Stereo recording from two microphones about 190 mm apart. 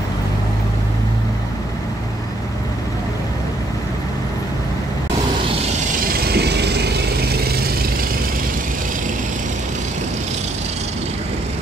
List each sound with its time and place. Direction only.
6.2 s vehicle: 60° right (ahead or behind)